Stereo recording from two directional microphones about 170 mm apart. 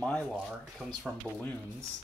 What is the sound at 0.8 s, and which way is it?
Speech, 10° right (ahead or behind).